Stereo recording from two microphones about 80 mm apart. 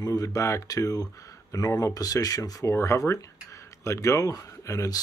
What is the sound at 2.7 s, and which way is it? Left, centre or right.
Speech, left.